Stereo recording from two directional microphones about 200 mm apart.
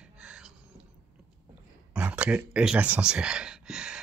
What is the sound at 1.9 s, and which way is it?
Speech, 5° right (ahead or behind).